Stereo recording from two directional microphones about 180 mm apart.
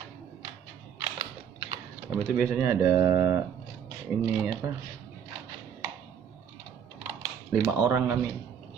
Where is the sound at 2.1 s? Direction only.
10° right (ahead or behind).